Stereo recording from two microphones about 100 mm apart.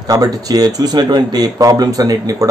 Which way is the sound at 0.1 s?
40° right (ahead or behind).